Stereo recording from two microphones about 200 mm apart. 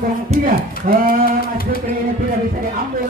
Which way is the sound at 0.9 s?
45° right (ahead or behind).